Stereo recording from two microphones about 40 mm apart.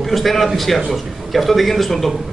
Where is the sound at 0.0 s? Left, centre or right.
Centre.